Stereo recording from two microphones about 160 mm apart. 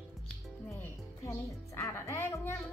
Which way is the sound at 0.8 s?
15° left (ahead or behind).